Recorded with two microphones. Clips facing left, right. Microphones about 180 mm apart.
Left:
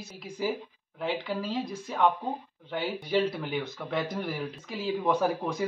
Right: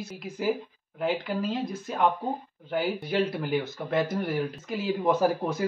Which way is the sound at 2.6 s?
Centre (ahead or behind).